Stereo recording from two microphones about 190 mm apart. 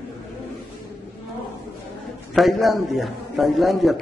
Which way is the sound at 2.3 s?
Centre (ahead or behind).